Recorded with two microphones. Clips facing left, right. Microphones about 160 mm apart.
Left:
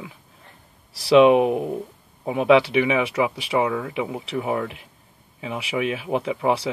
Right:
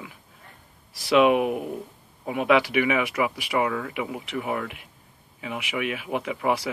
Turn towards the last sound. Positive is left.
turn(degrees=25)  # may be behind; listen again after turning